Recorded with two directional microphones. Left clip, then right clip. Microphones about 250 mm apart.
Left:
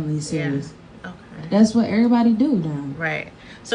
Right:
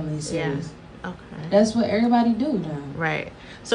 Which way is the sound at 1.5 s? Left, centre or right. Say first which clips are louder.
Even; left.